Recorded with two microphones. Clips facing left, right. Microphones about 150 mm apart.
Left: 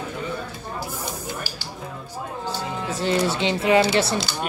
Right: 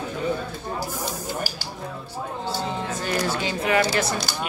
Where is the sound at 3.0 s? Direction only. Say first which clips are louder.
Left 5 dB; 25° left (ahead or behind).